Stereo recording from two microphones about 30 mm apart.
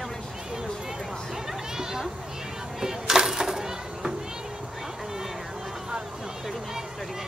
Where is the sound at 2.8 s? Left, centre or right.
Centre.